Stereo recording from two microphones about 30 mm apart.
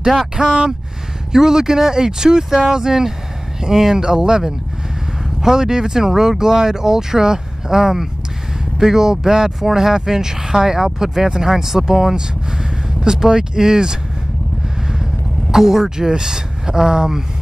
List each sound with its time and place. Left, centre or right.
0.4 s speech: right
15.5 s speech: centre